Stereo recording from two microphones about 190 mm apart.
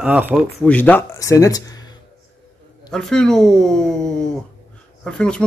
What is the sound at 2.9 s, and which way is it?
Speech, 5° left (ahead or behind).